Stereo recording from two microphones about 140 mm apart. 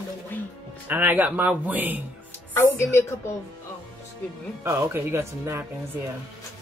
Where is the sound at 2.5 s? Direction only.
20° left (ahead or behind).